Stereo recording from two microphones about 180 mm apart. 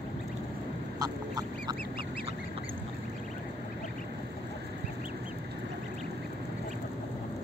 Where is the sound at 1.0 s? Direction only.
20° right (ahead or behind).